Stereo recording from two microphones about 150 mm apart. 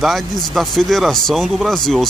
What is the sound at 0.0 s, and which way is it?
Speech, centre (ahead or behind).